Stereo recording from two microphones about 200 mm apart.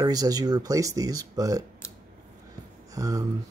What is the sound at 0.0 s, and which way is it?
Speech, 20° right (ahead or behind).